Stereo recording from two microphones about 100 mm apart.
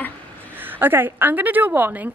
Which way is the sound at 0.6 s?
20° right (ahead or behind).